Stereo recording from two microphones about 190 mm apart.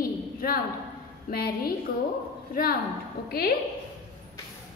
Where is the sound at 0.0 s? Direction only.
50° left (ahead or behind).